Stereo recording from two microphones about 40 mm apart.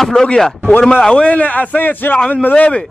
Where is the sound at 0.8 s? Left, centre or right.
Left.